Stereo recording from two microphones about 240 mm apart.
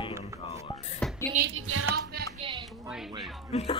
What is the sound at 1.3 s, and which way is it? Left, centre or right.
Music, right.